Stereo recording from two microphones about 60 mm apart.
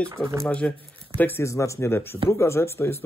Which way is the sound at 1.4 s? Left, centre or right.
Left.